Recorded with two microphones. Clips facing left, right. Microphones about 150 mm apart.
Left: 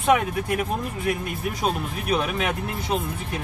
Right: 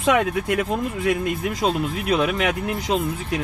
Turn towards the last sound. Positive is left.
turn(degrees=-90)